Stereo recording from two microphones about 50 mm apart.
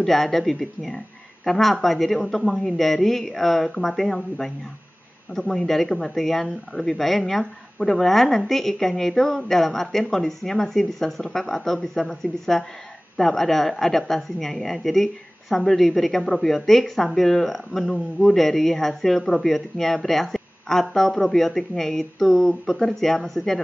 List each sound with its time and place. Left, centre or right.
0.0 s a woman's voice: centre